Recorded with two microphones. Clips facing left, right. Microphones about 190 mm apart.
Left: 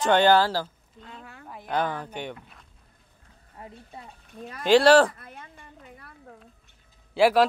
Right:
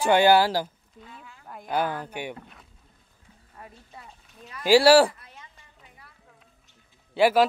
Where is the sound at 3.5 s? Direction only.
25° left (ahead or behind).